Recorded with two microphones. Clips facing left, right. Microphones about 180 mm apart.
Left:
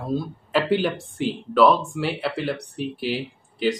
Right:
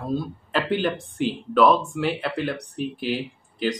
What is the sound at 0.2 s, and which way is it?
Speech, 5° left (ahead or behind).